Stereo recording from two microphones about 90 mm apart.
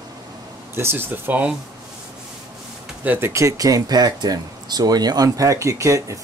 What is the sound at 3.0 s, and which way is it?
Speech, 25° right (ahead or behind).